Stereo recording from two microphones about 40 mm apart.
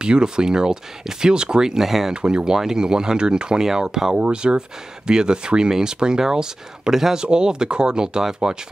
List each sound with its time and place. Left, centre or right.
0.0 s speech: right
2.2 s speech: centre
4.1 s speech: right
7.2 s speech: centre